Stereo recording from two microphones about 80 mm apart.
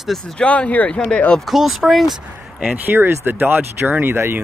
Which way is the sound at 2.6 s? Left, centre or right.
Centre.